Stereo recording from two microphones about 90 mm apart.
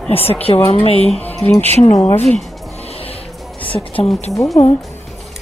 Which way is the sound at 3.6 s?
75° left (ahead or behind).